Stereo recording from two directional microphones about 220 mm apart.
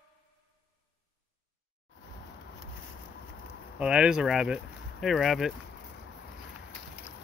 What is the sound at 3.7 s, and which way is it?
Speech, 5° right (ahead or behind).